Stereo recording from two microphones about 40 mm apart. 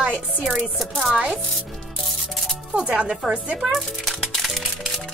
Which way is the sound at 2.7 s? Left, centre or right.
Right.